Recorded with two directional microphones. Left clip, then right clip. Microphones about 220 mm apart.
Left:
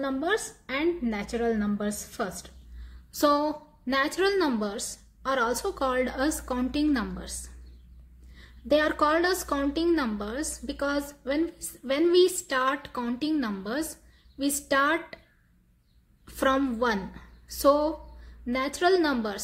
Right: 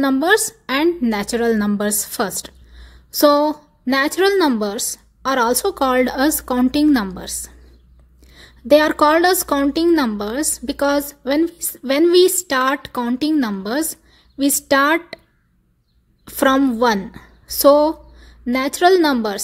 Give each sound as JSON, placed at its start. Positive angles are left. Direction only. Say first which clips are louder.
{"t": 0.0, "sound": "a woman's voice", "louder": "right 12 dB", "side_deg": -50}
{"t": 3.1, "sound": "a woman's voice", "louder": "right 10 dB", "side_deg": -35}
{"t": 16.3, "sound": "a woman's voice", "louder": "right 10 dB", "side_deg": -35}